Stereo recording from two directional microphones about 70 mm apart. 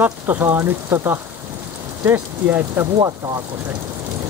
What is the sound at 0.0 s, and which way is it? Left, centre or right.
Speech, right.